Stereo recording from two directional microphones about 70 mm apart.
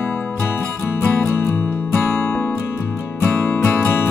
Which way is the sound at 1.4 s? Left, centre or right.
Left.